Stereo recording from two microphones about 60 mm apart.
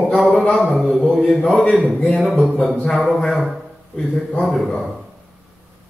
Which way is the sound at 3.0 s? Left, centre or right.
Centre.